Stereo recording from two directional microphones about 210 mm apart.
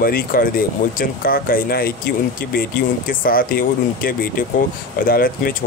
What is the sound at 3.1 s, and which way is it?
Speech, 40° left (ahead or behind).